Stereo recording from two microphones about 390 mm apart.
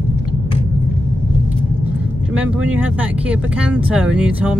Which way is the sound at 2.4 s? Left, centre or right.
Centre.